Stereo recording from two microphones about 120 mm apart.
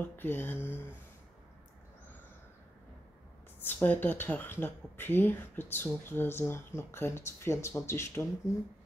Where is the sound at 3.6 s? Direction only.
15° left (ahead or behind).